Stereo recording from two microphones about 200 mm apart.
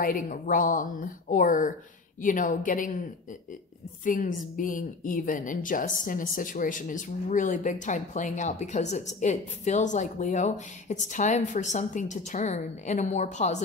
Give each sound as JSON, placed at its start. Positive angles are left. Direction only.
{"t": 0.0, "sound": "a woman's voice", "side_deg": 45}
{"t": 4.0, "sound": "a woman's voice", "side_deg": 40}